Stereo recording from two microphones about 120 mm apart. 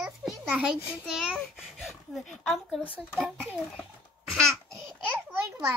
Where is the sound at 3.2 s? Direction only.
10° right (ahead or behind).